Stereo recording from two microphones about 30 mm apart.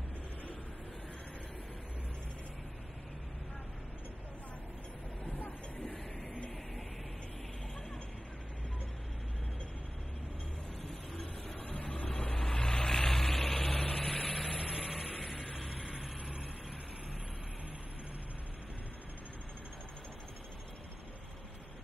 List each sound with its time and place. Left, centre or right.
5.9 s a sound: left
11.6 s vehicle: left
12.3 s vehicle: centre
14.3 s vehicle: centre